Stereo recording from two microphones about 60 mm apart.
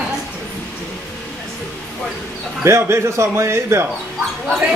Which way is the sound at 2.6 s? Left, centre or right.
Right.